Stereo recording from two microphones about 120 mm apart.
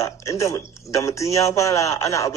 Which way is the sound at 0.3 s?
25° left (ahead or behind).